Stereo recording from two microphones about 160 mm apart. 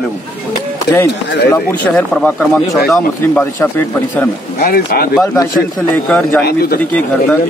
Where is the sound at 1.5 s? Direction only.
15° left (ahead or behind).